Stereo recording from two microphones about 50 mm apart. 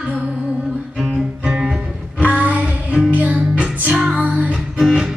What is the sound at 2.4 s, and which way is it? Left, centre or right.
Music, right.